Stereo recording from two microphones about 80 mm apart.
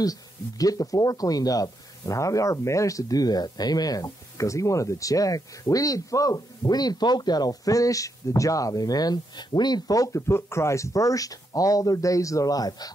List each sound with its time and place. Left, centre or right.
0.0 s speech: left